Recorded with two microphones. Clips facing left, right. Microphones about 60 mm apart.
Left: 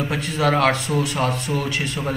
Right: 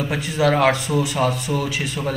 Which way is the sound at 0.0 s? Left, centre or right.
Centre.